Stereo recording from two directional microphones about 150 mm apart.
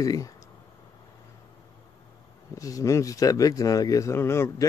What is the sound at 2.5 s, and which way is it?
Speech, 20° left (ahead or behind).